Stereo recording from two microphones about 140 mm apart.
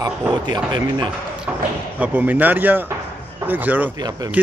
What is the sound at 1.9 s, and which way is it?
Speech, 10° right (ahead or behind).